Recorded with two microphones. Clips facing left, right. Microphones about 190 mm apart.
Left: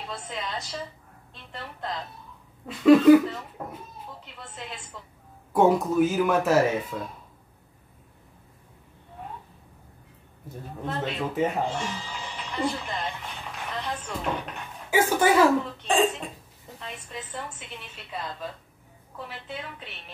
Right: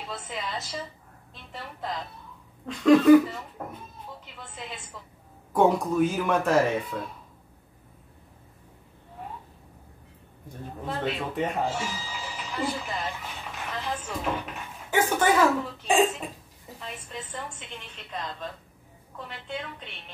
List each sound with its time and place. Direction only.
0.1 s a woman's voice: centre (ahead or behind)
1.3 s a sound: centre (ahead or behind)
2.6 s a woman's voice: 5° left (ahead or behind)
4.2 s music: centre (ahead or behind)
5.5 s a woman's voice: 5° left (ahead or behind)
10.9 s speech: 5° right (ahead or behind)
13.7 s a sound: 5° right (ahead or behind)
14.9 s speech: 10° left (ahead or behind)
15.8 s cough: 5° right (ahead or behind)
16.8 s a woman's voice: centre (ahead or behind)